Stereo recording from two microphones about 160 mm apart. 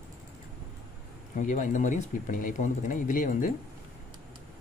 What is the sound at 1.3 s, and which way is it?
Speech, 55° left (ahead or behind).